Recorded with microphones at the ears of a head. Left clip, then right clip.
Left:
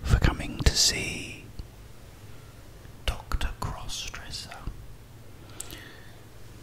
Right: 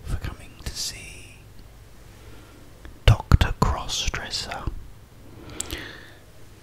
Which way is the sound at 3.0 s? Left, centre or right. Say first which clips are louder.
Right 10 dB; right.